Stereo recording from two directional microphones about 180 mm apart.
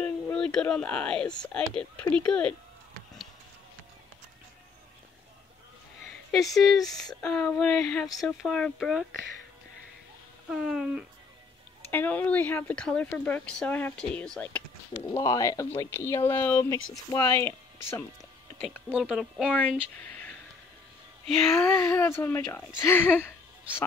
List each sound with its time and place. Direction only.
0.0 s speech: 5° left (ahead or behind)
2.1 s child singing: 5° left (ahead or behind)
6.3 s child singing: centre (ahead or behind)
10.5 s child singing: 5° right (ahead or behind)
11.9 s speech: 10° left (ahead or behind)
15.1 s speech: 20° left (ahead or behind)
18.9 s child singing: 5° right (ahead or behind)
20.0 s a sound: 10° left (ahead or behind)
21.6 s speech: 15° left (ahead or behind)